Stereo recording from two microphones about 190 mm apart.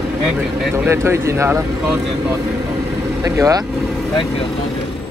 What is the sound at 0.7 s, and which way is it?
Speech, 15° right (ahead or behind).